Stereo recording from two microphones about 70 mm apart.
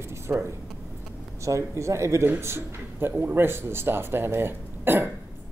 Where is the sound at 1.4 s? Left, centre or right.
Right.